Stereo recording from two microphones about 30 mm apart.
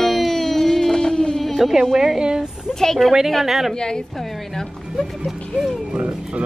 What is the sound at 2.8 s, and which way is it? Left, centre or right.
Speech, centre.